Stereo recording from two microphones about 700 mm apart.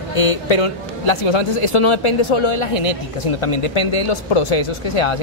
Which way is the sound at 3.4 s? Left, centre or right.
Left.